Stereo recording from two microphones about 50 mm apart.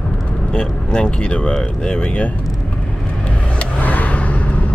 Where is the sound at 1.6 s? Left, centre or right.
Centre.